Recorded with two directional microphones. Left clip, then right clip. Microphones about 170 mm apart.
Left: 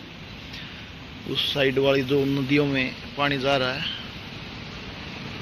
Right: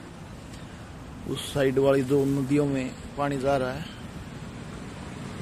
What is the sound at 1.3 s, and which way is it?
Speech, 15° right (ahead or behind).